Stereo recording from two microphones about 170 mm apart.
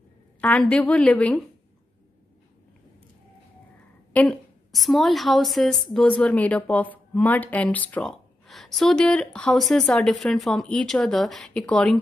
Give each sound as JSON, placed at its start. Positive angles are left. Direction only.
{"t": 0.4, "sound": "a woman's voice", "side_deg": 10}
{"t": 4.1, "sound": "a woman's voice", "side_deg": 5}